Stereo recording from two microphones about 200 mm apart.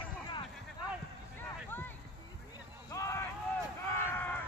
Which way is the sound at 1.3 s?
10° left (ahead or behind).